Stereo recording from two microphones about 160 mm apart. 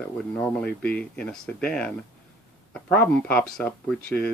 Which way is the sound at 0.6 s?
5° left (ahead or behind).